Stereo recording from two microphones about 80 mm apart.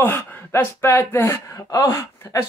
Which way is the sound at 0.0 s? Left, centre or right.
Left.